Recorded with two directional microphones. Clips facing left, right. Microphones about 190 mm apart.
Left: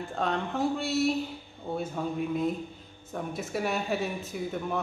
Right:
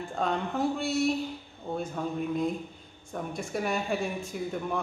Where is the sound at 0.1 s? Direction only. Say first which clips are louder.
Right 1 dB; centre (ahead or behind).